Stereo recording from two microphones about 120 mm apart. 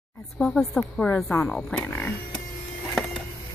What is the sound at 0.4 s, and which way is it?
Speech, 5° left (ahead or behind).